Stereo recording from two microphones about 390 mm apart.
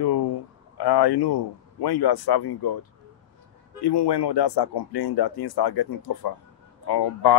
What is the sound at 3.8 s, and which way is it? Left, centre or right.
Speech, left.